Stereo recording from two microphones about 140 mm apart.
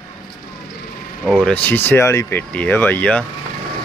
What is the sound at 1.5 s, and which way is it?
Speech, 10° left (ahead or behind).